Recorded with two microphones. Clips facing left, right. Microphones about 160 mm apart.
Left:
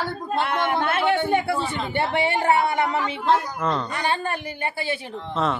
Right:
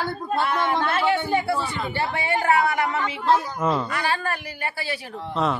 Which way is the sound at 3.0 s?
5° right (ahead or behind).